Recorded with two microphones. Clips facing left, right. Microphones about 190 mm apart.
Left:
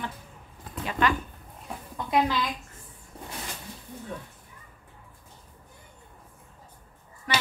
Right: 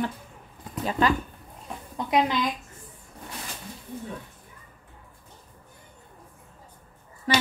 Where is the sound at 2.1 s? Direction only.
20° right (ahead or behind).